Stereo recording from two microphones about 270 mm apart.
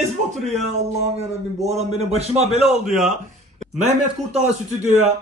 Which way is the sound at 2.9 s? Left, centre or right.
Centre.